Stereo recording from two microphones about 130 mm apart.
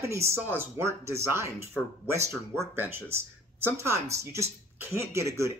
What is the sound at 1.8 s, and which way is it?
Speech, 5° left (ahead or behind).